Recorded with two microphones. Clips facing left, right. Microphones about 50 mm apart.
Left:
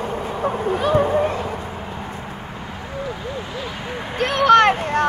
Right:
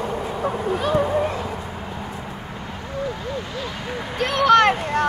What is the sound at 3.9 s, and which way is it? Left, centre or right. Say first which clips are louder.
Speech: left 1 dB; left.